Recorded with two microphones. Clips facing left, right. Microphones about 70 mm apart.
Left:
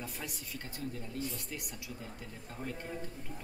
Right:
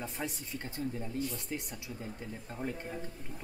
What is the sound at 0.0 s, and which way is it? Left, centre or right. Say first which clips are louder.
Speech: right 4 dB; right.